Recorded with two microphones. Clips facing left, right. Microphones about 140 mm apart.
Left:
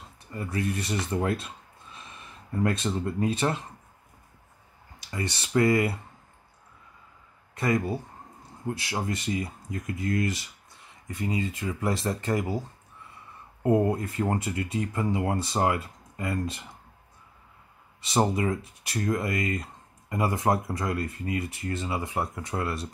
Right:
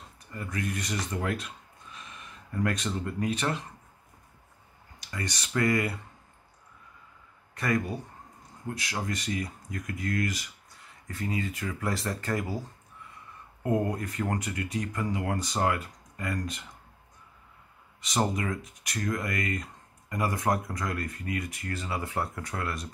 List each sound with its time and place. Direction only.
0.3 s speech: 25° left (ahead or behind)
5.0 s speech: 25° left (ahead or behind)
7.5 s speech: 25° left (ahead or behind)
18.0 s speech: 25° left (ahead or behind)